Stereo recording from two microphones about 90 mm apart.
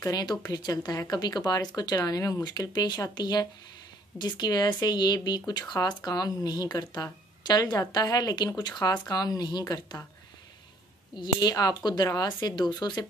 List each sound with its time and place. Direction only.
0.0 s speech: 45° left (ahead or behind)
11.1 s speech: 45° left (ahead or behind)